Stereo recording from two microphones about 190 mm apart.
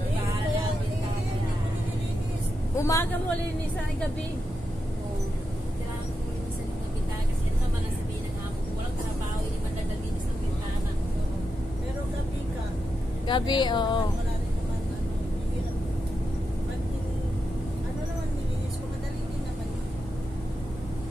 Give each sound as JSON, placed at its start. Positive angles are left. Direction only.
{"t": 2.8, "sound": "speech", "side_deg": 15}
{"t": 13.3, "sound": "speech", "side_deg": 25}